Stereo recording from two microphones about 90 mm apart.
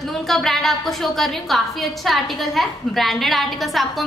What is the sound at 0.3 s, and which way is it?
A woman's voice, centre (ahead or behind).